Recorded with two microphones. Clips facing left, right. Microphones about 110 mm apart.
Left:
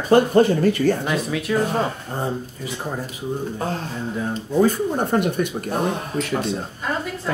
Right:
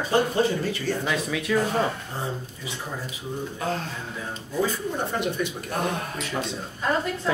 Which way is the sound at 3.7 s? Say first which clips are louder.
Left 5 dB; 45° left (ahead or behind).